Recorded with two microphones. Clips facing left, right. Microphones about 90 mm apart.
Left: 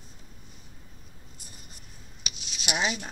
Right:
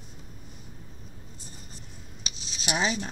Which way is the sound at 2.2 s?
30° right (ahead or behind).